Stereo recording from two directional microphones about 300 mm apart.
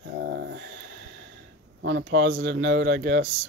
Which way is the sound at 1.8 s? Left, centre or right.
Right.